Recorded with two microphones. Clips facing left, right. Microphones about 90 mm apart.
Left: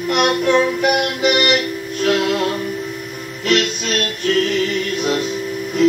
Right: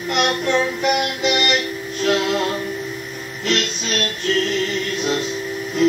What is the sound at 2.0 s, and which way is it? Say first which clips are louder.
Music: left 2 dB; 50° left (ahead or behind).